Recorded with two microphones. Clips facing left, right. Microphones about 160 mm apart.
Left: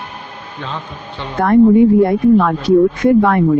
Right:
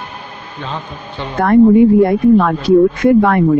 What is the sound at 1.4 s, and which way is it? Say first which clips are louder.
Speech: right 1 dB; 70° right (ahead or behind).